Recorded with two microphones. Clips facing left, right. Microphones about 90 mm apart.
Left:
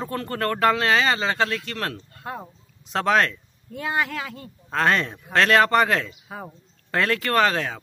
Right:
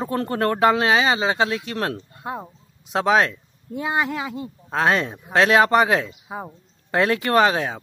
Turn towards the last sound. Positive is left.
turn(degrees=-15)  # may be behind; listen again after turning